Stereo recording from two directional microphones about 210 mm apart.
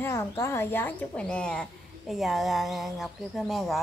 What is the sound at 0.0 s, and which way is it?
A woman's voice, 10° left (ahead or behind).